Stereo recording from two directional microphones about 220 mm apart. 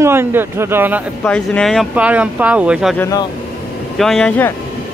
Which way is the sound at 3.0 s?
15° left (ahead or behind).